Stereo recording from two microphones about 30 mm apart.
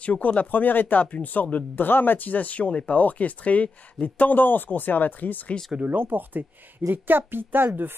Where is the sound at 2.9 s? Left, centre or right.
Left.